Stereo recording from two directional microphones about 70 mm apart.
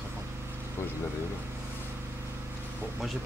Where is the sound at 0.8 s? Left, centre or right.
Left.